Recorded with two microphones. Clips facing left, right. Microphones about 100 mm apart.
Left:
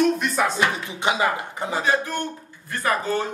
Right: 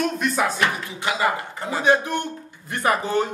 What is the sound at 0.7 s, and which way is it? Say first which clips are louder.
Speech: left 2 dB; 20° left (ahead or behind).